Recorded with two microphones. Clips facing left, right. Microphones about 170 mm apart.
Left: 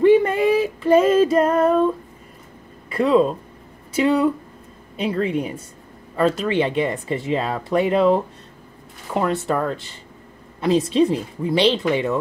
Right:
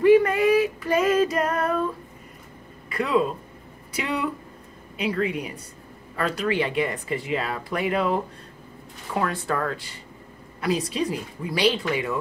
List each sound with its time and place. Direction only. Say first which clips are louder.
0.0 s female singing: left 2 dB; 30° left (ahead or behind)
2.9 s speech: left 6 dB; 30° left (ahead or behind)